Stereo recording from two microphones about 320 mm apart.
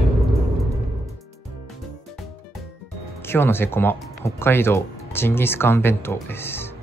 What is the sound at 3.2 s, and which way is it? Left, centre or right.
Speech, centre.